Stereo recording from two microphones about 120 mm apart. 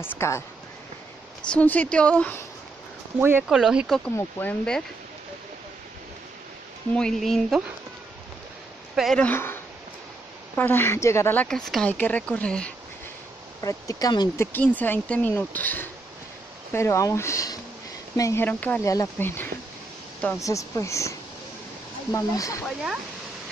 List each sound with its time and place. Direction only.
0.0 s speech: 20° left (ahead or behind)
1.5 s speech: 10° left (ahead or behind)
3.2 s speech: 15° right (ahead or behind)
3.4 s speech: 5° right (ahead or behind)
4.0 s speech: 10° left (ahead or behind)
7.0 s speech: 5° left (ahead or behind)
8.9 s speech: centre (ahead or behind)
9.2 s speech: 20° left (ahead or behind)
11.4 s speech: 5° left (ahead or behind)
13.6 s speech: 30° left (ahead or behind)
14.4 s speech: 15° left (ahead or behind)
18.4 s speech: 15° left (ahead or behind)
22.7 s speech: 5° right (ahead or behind)